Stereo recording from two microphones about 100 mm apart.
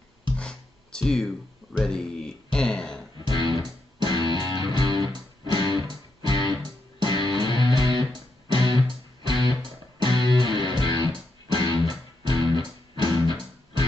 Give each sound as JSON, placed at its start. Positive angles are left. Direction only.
{"t": 0.4, "sound": "music", "side_deg": 10}
{"t": 3.3, "sound": "music", "side_deg": -45}